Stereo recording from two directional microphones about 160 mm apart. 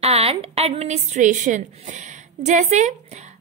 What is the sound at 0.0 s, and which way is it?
A woman's voice, 40° right (ahead or behind).